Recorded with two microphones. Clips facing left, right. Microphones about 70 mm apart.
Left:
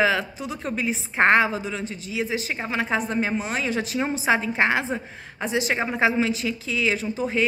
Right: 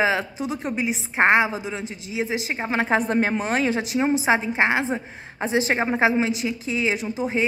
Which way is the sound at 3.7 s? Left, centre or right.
Centre.